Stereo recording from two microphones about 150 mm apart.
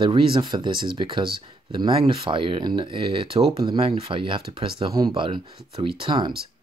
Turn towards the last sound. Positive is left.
turn(degrees=-35)  # may be behind; listen again after turning